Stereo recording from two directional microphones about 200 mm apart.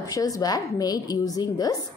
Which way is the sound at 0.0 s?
15° left (ahead or behind).